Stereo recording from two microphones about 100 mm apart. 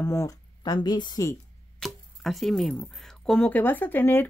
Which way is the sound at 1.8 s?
Centre (ahead or behind).